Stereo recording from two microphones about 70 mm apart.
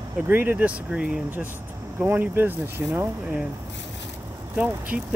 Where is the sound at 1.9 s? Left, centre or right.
Right.